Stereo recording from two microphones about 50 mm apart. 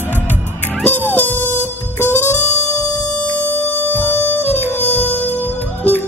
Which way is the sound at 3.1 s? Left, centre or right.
Left.